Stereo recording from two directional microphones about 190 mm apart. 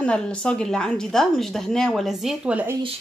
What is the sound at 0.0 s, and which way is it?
A woman's voice, 5° left (ahead or behind).